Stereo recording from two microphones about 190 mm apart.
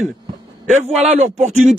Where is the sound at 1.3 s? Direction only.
35° right (ahead or behind).